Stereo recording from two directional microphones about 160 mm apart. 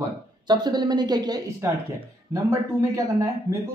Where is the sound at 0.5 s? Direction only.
25° right (ahead or behind).